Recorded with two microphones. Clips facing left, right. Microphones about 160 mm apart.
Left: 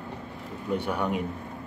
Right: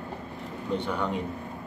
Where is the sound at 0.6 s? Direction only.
10° left (ahead or behind).